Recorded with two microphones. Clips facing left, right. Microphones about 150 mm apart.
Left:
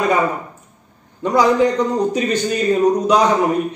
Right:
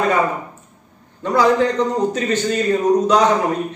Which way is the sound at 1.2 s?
15° left (ahead or behind).